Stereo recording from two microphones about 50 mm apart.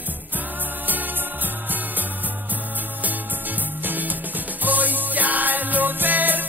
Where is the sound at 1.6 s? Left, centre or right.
Right.